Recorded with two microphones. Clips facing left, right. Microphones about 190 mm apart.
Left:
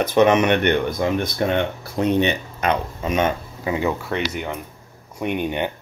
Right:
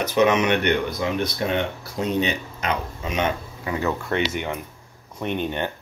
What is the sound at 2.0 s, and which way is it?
Speech, 60° left (ahead or behind).